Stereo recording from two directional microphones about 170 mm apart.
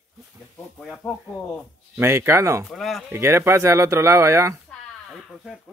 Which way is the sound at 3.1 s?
15° right (ahead or behind).